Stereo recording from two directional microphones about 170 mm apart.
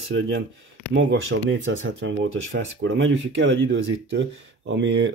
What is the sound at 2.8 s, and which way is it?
Speech, 90° right.